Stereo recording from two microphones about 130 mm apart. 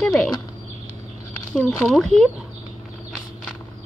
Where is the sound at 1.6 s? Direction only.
Centre (ahead or behind).